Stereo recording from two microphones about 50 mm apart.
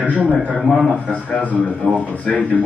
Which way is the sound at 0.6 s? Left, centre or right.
Centre.